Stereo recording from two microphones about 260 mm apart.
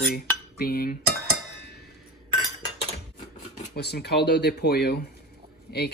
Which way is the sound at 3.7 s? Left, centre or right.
Left.